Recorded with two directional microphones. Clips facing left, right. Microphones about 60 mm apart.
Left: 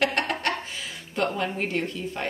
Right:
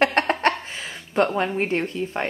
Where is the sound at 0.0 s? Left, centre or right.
Right.